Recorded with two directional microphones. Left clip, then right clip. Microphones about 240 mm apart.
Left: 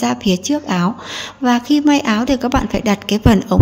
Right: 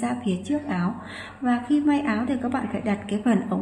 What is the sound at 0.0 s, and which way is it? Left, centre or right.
Speech, left.